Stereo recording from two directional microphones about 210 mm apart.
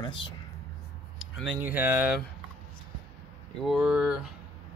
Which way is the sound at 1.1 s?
60° left (ahead or behind).